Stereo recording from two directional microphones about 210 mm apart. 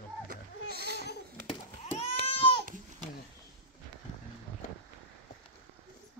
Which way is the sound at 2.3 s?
25° left (ahead or behind).